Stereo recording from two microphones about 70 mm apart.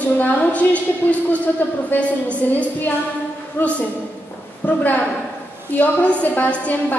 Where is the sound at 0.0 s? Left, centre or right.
Left.